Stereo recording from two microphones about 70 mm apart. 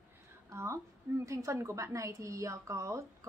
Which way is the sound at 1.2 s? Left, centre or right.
Right.